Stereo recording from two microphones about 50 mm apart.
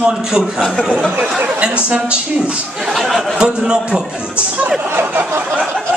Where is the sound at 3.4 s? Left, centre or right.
Centre.